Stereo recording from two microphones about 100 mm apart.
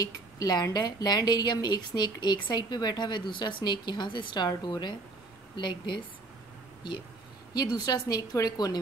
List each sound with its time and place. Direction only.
0.0 s a woman's voice: 40° left (ahead or behind)
7.5 s a woman's voice: 40° left (ahead or behind)